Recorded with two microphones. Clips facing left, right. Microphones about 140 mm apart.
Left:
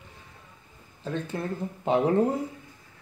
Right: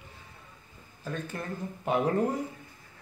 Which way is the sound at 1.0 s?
25° left (ahead or behind).